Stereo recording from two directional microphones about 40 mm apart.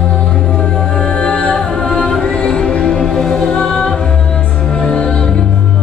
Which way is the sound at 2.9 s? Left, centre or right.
Centre.